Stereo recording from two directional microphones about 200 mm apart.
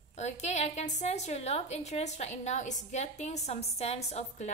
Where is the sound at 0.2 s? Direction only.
35° left (ahead or behind).